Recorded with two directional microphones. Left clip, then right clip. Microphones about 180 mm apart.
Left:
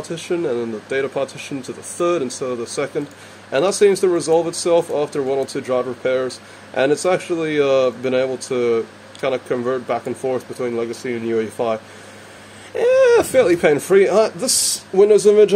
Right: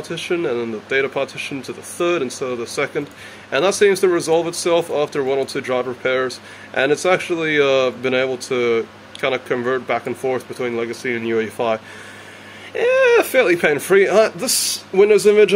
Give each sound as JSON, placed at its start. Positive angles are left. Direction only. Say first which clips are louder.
{"t": 0.1, "sound": "speech", "louder": "right 1 dB", "side_deg": 10}